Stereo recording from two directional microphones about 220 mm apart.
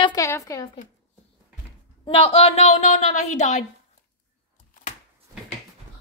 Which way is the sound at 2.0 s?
25° left (ahead or behind).